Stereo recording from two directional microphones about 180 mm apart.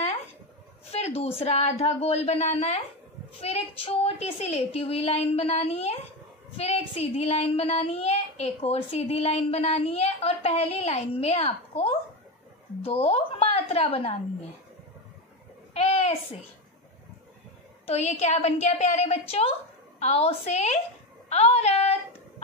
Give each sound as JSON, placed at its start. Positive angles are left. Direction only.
{"t": 0.9, "sound": "a woman's voice", "side_deg": 35}
{"t": 15.7, "sound": "babbling", "side_deg": 35}
{"t": 17.8, "sound": "a woman's voice", "side_deg": 35}